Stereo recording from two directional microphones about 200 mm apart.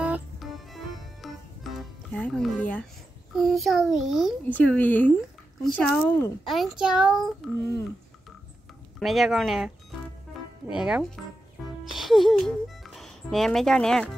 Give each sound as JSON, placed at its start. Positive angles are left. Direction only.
{"t": 0.0, "sound": "music", "side_deg": -5}
{"t": 3.3, "sound": "a child's voice", "side_deg": 0}
{"t": 7.5, "sound": "speech", "side_deg": 15}
{"t": 9.0, "sound": "a child's voice", "side_deg": 0}
{"t": 10.7, "sound": "a child's voice", "side_deg": -5}